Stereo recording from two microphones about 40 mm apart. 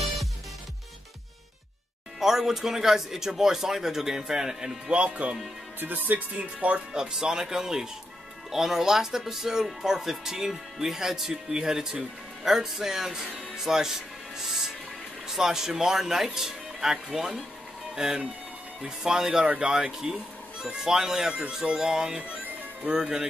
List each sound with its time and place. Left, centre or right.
2.1 s speech: centre
4.9 s speech: right
5.8 s speech: right
6.3 s speech: right
6.9 s speech: centre
19.4 s speech: right
21.3 s speech: right